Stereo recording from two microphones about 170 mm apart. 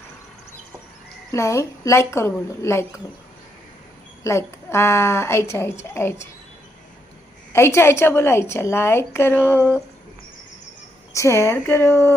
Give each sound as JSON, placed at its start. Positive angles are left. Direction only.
{"t": 1.3, "sound": "a woman's voice", "side_deg": 15}
{"t": 4.2, "sound": "a woman's voice", "side_deg": 15}
{"t": 7.5, "sound": "a woman's voice", "side_deg": 15}
{"t": 9.6, "sound": "speech", "side_deg": -10}
{"t": 11.1, "sound": "a woman's voice", "side_deg": 15}